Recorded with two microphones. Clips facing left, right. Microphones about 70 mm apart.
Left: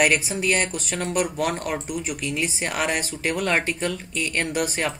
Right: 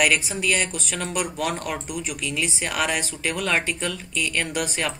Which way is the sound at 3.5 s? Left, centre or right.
Centre.